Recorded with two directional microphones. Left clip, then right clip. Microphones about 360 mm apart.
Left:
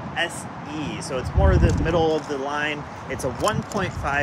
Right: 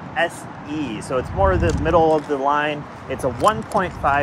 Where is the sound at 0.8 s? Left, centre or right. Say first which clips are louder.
Right 5 dB; centre.